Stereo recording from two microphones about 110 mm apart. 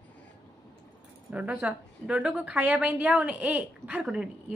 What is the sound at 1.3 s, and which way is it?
A woman's voice, 15° right (ahead or behind).